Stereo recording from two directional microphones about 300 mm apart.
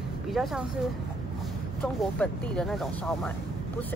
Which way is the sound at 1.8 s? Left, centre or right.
Centre.